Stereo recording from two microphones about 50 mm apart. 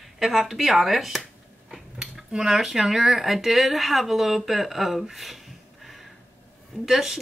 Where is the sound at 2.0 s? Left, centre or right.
Centre.